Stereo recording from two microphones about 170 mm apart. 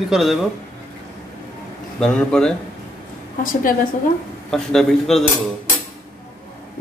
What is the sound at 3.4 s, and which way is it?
Speech, 55° left (ahead or behind).